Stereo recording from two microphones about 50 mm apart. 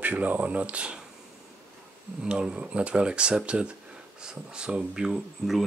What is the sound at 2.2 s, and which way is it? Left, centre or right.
Speech, centre.